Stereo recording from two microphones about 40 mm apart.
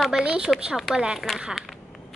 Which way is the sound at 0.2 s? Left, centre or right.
Right.